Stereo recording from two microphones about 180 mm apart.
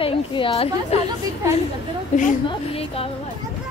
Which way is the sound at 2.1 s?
40° left (ahead or behind).